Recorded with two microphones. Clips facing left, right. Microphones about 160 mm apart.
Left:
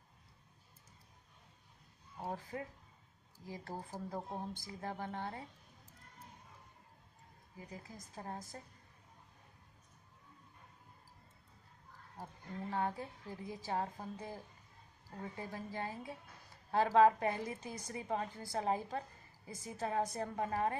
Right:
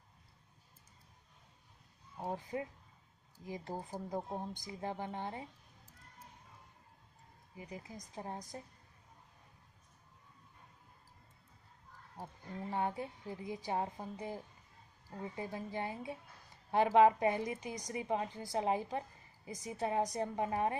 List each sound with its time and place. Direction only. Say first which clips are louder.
2.1 s a woman's voice: right 3 dB; 20° right (ahead or behind)
7.5 s a woman's voice: right 3 dB; 15° right (ahead or behind)
12.2 s a woman's voice: right 1 dB; 20° right (ahead or behind)